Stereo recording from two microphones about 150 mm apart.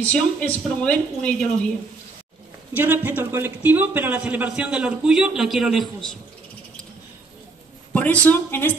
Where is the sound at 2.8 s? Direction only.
15° right (ahead or behind).